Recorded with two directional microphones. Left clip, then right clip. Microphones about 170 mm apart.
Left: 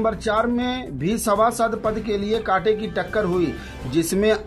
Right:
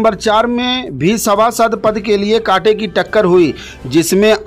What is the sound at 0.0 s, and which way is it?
Speech, 50° right (ahead or behind).